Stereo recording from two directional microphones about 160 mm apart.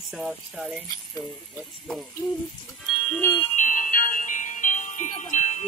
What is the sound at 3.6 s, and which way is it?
Music, 50° left (ahead or behind).